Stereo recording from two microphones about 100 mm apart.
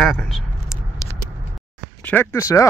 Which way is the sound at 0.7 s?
30° left (ahead or behind).